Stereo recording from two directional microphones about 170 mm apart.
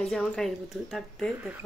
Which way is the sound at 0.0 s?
5° left (ahead or behind).